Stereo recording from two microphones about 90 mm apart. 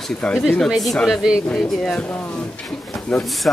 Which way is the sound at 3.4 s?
15° left (ahead or behind).